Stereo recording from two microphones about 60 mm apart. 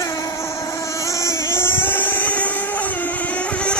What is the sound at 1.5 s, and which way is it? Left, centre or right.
Vehicle, left.